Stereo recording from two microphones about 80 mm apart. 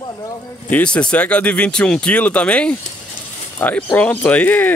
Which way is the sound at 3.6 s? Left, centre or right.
Left.